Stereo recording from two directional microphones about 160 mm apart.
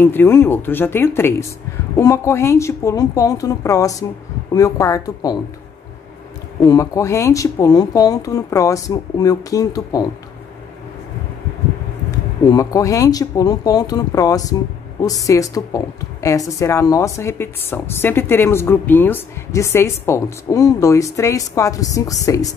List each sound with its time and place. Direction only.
0.0 s a woman's voice: 15° left (ahead or behind)
6.6 s a woman's voice: 20° left (ahead or behind)
12.4 s a woman's voice: 20° left (ahead or behind)